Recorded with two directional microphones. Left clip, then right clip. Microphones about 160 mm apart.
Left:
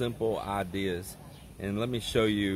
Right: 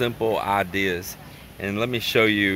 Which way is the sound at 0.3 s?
5° left (ahead or behind).